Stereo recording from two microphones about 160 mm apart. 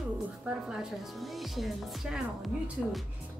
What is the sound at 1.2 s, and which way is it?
A woman's voice, centre (ahead or behind).